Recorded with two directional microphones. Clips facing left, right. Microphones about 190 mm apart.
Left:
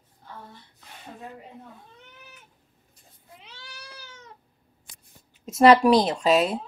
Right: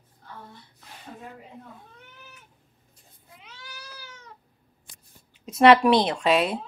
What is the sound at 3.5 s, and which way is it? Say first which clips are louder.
Cat: right 2 dB; 30° left (ahead or behind).